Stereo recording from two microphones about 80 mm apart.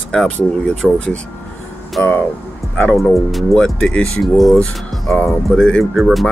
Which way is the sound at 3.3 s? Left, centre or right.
Centre.